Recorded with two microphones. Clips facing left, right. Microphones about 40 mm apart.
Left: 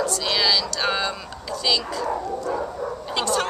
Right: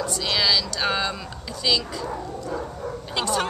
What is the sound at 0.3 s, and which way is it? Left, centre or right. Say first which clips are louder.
Speech: right 1 dB; centre.